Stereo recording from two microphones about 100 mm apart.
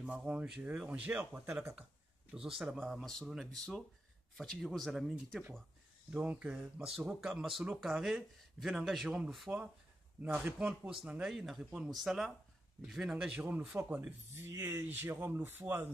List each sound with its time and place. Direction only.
0.0 s speech: 10° right (ahead or behind)
6.0 s speech: 15° right (ahead or behind)
14.3 s speech: 25° right (ahead or behind)